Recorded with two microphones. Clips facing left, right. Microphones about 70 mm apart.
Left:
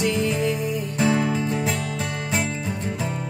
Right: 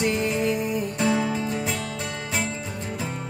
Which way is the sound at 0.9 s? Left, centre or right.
Centre.